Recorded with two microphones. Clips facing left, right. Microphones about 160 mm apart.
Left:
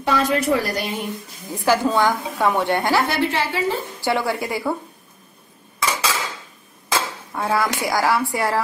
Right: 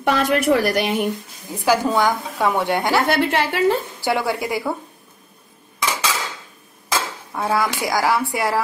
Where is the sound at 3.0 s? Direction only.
60° right (ahead or behind).